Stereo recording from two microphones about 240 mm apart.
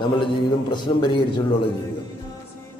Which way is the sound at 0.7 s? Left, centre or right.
Centre.